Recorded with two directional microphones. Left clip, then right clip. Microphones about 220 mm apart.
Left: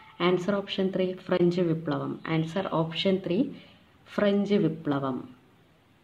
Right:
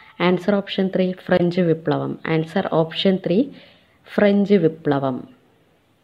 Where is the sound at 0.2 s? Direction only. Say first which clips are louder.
Right 7 dB; 30° right (ahead or behind).